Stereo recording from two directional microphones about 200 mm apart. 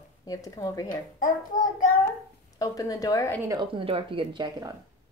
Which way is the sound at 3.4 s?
20° right (ahead or behind).